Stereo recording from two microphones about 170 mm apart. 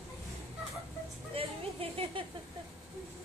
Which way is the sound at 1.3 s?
35° right (ahead or behind).